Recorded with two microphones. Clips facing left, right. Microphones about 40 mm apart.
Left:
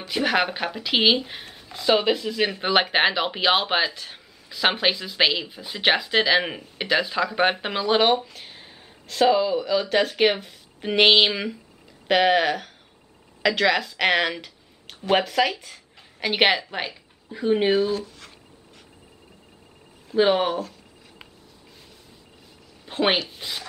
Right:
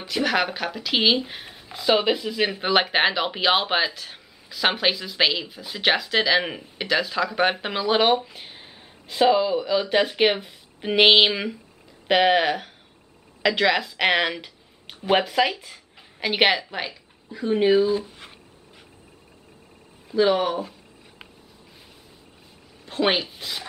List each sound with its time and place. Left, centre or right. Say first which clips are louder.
0.1 s speech: left 1 dB; centre
17.9 s speech: right 2 dB; right
20.2 s speech: even; centre
22.8 s speech: even; centre